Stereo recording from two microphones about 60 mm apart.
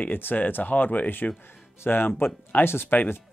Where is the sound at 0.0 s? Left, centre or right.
Left.